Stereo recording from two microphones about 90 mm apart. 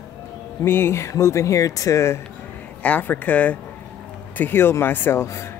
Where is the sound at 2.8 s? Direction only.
20° left (ahead or behind).